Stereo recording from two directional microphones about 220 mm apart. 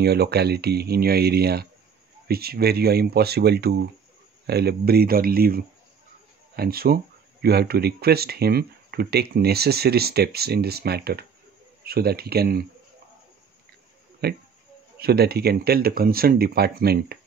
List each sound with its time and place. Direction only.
0.0 s speech: 45° right (ahead or behind)
14.2 s speech: 45° right (ahead or behind)